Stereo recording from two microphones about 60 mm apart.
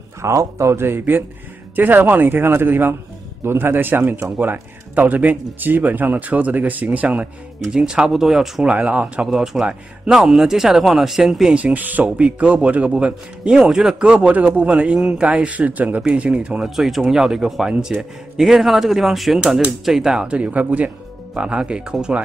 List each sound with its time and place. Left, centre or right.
0.2 s speech: right
7.6 s speech: centre
8.6 s speech: right
9.3 s a man's voice: centre
11.5 s a man's voice: right
16.7 s a man's voice: centre